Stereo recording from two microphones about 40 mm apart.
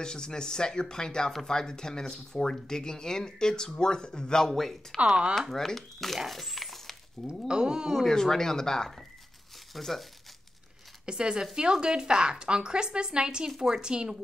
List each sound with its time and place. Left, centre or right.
0.0 s speech: centre
4.5 s speech: centre
6.1 s a sound: centre
7.4 s speech: right
8.0 s speech: centre
11.1 s speech: right